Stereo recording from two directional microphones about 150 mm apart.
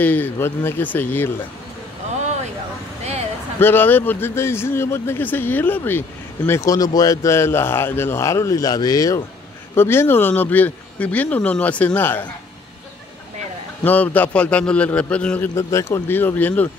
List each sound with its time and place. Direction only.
0.0 s speech: 10° left (ahead or behind)
3.5 s speech: 15° left (ahead or behind)
13.8 s speech: 10° left (ahead or behind)